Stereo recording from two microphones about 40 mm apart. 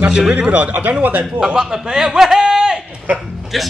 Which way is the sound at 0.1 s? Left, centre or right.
Centre.